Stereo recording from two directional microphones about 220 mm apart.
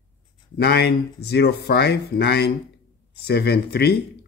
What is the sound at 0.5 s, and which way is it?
Speech, 45° left (ahead or behind).